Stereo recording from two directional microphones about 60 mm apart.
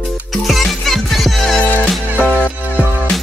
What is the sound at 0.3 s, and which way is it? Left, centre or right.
Music, centre.